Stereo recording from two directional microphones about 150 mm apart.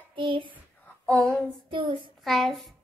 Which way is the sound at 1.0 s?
10° left (ahead or behind).